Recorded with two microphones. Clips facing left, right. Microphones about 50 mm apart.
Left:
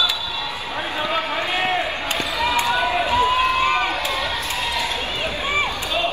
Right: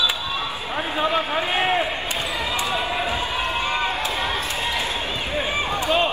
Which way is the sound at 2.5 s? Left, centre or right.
Left.